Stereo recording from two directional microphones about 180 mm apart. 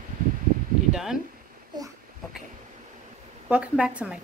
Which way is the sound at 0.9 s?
5° right (ahead or behind).